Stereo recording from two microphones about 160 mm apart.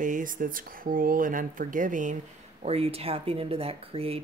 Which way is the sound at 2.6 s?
40° right (ahead or behind).